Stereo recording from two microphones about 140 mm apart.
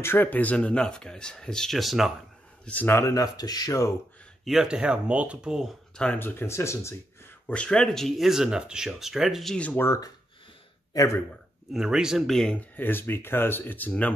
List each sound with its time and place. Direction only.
0.0 s speech: 15° left (ahead or behind); by 2.1 s centre (ahead or behind)
2.6 s speech: 10° left (ahead or behind)
4.5 s speech: 5° right (ahead or behind)
5.9 s speech: 10° left (ahead or behind)
7.4 s speech: 10° left (ahead or behind); by 11.1 s 25° left (ahead or behind)
11.7 s speech: 5° right (ahead or behind); by 14.1 s 10° left (ahead or behind)